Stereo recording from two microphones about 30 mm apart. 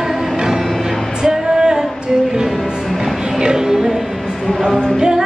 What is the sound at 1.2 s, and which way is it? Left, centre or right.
Music, right.